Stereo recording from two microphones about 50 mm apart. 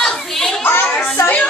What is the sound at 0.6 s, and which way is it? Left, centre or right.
Speech, left.